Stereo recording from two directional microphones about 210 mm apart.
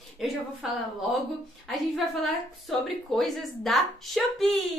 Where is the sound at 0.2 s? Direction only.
Centre (ahead or behind).